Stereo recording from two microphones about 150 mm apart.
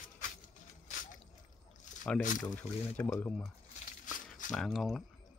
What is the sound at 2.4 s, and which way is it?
Speech, 10° left (ahead or behind).